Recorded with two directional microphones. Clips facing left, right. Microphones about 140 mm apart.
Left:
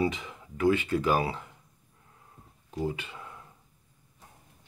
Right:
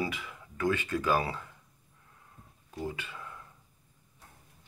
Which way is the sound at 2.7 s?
20° left (ahead or behind).